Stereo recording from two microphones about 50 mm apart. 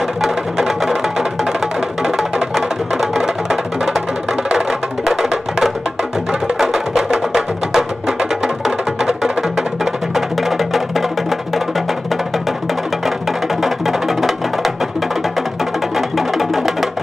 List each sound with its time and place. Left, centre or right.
0.2 s music: centre
13.6 s music: centre
16.2 s music: centre